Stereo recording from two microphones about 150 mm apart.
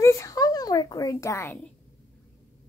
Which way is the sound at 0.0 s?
20° left (ahead or behind).